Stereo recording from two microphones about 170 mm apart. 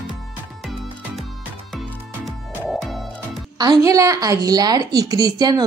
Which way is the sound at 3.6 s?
20° right (ahead or behind).